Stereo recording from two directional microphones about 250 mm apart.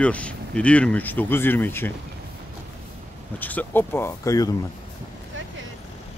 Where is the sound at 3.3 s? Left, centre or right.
Centre.